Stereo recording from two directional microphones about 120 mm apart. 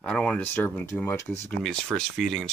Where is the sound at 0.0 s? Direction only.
10° left (ahead or behind).